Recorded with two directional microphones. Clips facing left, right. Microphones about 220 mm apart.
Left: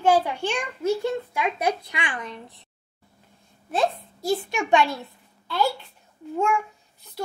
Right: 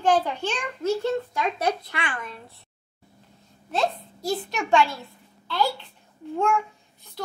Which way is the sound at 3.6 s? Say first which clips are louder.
Left 2 dB; 10° left (ahead or behind).